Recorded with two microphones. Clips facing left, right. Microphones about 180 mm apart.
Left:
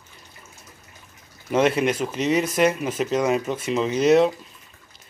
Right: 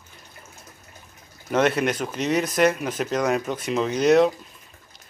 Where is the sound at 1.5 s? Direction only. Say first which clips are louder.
Left 1 dB; 5° left (ahead or behind).